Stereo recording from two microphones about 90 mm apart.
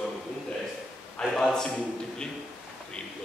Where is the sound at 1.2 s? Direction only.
5° left (ahead or behind).